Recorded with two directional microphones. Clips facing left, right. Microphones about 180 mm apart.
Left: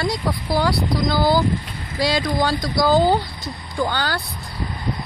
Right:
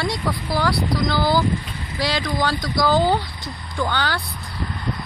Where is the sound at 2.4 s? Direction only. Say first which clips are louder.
Left 2 dB; 15° left (ahead or behind).